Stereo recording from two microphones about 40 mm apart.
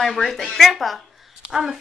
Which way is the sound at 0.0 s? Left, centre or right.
Centre.